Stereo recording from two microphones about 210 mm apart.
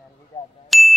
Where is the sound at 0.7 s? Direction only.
Centre (ahead or behind).